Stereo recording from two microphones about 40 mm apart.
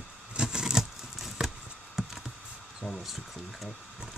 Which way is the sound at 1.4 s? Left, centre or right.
Right.